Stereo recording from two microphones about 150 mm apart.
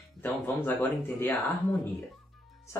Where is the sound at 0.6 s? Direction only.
15° left (ahead or behind).